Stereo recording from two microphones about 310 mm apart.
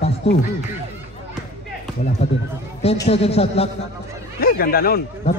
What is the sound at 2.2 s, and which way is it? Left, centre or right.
Speech, centre.